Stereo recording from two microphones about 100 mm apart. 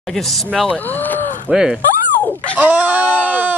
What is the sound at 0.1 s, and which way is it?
Speech, centre (ahead or behind).